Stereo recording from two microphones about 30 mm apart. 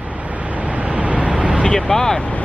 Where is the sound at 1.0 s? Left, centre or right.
Right.